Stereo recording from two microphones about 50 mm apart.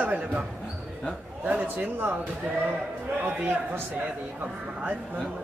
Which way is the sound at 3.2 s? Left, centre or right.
Right.